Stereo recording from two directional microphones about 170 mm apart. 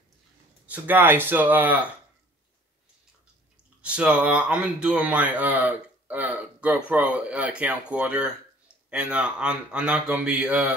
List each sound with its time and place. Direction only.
0.7 s speech: 10° right (ahead or behind)
3.8 s speech: 5° right (ahead or behind)